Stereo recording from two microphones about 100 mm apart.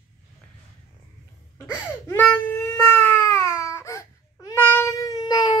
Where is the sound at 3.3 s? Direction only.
30° left (ahead or behind).